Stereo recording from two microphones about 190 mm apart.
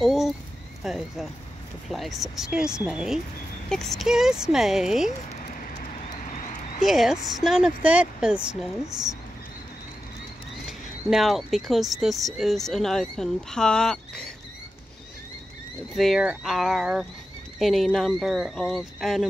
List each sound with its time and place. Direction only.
0.0 s speech: centre (ahead or behind)
6.2 s a sound: 45° left (ahead or behind)
6.9 s speech: centre (ahead or behind)
11.1 s speech: centre (ahead or behind)
15.9 s speech: centre (ahead or behind)